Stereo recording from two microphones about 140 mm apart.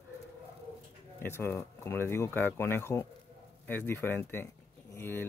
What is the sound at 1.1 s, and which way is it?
Speech, 15° left (ahead or behind).